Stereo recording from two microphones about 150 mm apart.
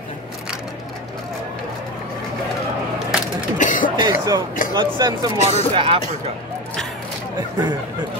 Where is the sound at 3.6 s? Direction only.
60° left (ahead or behind).